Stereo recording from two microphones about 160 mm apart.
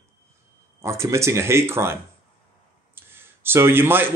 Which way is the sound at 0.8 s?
20° right (ahead or behind).